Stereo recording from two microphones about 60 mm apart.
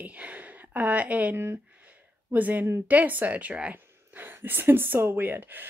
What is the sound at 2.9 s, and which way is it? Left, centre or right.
Speech, right.